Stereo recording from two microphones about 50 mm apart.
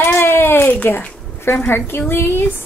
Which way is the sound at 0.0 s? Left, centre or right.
Left.